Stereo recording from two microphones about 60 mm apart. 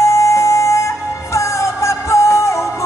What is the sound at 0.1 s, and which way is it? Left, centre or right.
Music, left.